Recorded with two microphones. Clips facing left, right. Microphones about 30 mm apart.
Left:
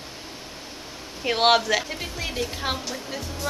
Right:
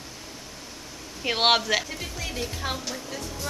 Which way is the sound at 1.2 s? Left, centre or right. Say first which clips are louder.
Left 2 dB; centre.